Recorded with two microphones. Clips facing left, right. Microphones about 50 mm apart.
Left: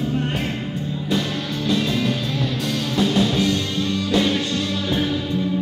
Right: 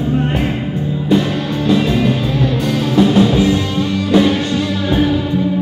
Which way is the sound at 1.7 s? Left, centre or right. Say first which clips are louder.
Right 7 dB; centre.